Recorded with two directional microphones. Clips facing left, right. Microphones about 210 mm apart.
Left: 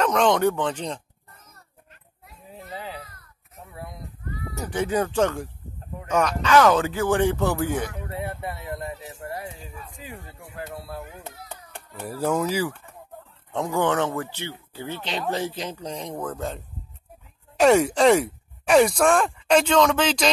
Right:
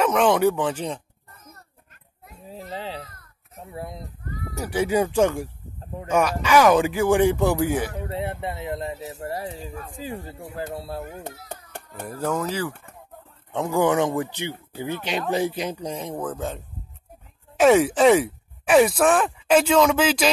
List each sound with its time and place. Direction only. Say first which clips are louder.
0.0 s a man's voice: right 1 dB; 5° right (ahead or behind)
2.5 s children playing: right 3 dB; 30° right (ahead or behind)
4.6 s a man's voice: right 3 dB; 10° right (ahead or behind)
7.9 s speech: right 3 dB; 30° right (ahead or behind)
11.0 s speech: right 4 dB; 45° right (ahead or behind)
12.1 s speech: left 2 dB; 10° left (ahead or behind)
13.5 s a man's voice: right 2 dB; 5° right (ahead or behind)